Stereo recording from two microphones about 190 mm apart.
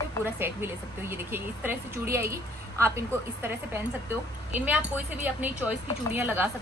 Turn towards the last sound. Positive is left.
turn(degrees=-10)  # may be behind; listen again after turning